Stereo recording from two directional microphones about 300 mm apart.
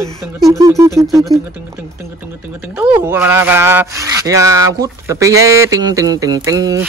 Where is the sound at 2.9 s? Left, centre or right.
Centre.